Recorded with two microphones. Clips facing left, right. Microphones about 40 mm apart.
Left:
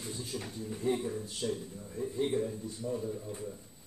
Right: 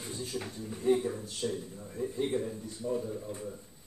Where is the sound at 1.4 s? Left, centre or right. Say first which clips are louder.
Right 2 dB; centre.